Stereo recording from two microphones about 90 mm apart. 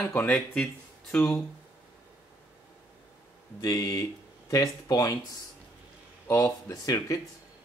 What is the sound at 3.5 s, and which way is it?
Speech, 40° left (ahead or behind).